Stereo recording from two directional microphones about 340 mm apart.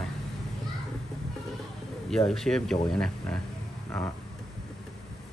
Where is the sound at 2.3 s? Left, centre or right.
Centre.